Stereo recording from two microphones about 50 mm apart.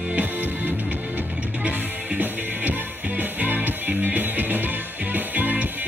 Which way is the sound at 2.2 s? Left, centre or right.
Right.